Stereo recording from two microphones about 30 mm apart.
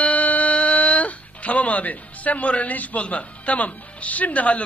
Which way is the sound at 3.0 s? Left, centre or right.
Left.